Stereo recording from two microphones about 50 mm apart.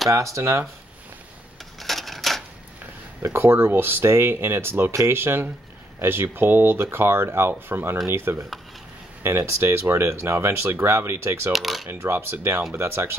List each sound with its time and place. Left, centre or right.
0.1 s speech: right
0.4 s speech: right
1.8 s typewriter: centre
3.2 s speech: right
9.5 s speech: right
11.5 s speech: centre
11.9 s speech: right